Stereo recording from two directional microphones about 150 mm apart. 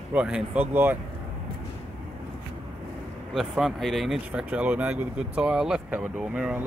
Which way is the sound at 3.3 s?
Centre (ahead or behind).